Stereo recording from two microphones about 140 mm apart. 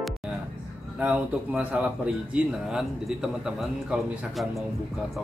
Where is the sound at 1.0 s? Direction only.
10° right (ahead or behind).